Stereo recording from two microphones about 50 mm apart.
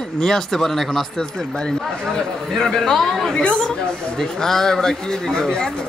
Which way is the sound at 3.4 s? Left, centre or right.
Left.